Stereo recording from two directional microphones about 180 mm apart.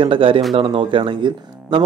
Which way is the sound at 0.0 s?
30° right (ahead or behind).